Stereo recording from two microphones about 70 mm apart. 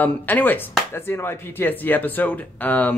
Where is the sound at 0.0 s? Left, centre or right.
Left.